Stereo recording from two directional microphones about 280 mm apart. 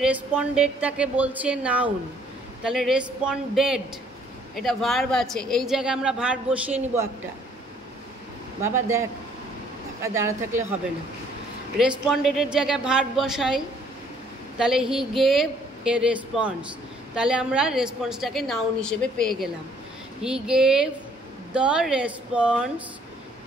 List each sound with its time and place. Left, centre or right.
0.0 s a woman's voice: centre
8.6 s speech: centre
10.0 s speech: centre
12.1 s a woman's voice: centre
14.6 s a woman's voice: centre